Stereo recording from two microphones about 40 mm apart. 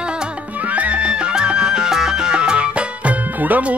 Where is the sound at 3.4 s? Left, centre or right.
Right.